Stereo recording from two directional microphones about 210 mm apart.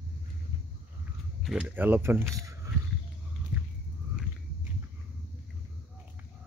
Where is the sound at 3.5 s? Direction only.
40° left (ahead or behind).